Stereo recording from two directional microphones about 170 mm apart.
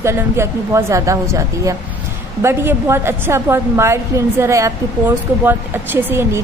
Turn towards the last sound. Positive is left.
turn(degrees=-15)  # may be behind; listen again after turning